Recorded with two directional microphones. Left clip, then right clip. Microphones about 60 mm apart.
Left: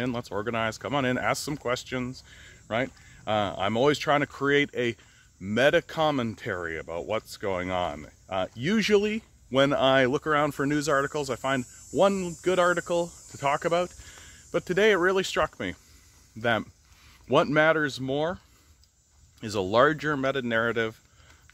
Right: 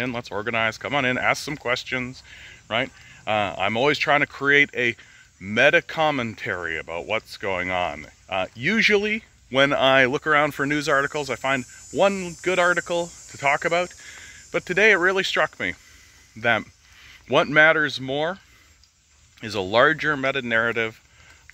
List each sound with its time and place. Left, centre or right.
0.0 s speech: centre; by 4.1 s left
4.1 s speech: left
9.5 s speech: centre
11.9 s speech: left
14.0 s a sound: centre
15.0 s speech: left
15.4 s speech: centre; by 18.1 s left
19.4 s speech: centre